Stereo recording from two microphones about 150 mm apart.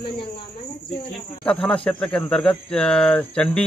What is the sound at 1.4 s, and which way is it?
Speech, 5° left (ahead or behind).